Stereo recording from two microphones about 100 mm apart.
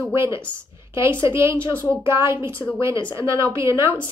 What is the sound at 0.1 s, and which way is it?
Speech, 25° right (ahead or behind).